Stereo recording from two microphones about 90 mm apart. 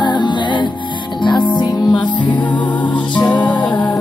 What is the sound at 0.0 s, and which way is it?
Music, 60° left (ahead or behind).